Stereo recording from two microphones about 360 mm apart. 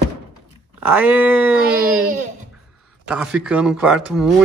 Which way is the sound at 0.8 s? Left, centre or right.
Centre.